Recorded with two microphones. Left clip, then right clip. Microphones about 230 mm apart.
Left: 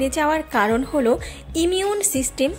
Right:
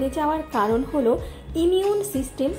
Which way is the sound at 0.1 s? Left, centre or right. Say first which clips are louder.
Left 4 dB; left.